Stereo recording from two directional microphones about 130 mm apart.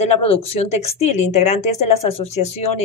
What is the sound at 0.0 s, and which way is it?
Speech, 55° left (ahead or behind).